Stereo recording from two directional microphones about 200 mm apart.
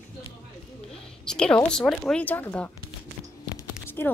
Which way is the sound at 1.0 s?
5° left (ahead or behind).